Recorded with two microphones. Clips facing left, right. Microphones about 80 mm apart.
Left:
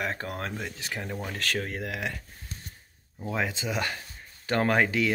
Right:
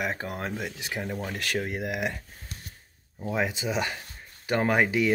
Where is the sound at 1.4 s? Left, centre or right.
Centre.